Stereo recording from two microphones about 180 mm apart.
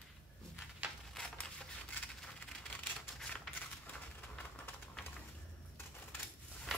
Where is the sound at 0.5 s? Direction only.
Centre (ahead or behind).